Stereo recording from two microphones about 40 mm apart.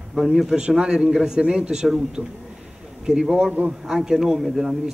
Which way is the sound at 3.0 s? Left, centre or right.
Centre.